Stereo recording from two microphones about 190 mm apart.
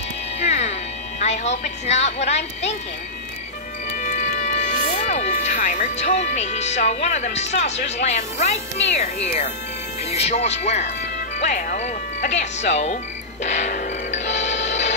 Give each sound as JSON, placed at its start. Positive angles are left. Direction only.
{"t": 0.4, "sound": "music", "side_deg": 35}
{"t": 1.2, "sound": "a woman's voice", "side_deg": 35}
{"t": 4.0, "sound": "a woman's voice", "side_deg": 40}
{"t": 11.3, "sound": "music", "side_deg": 40}